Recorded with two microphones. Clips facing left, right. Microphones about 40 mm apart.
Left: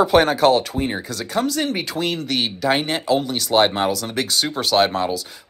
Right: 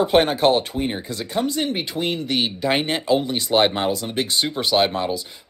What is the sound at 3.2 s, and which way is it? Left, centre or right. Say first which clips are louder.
Speech: left 1 dB; right.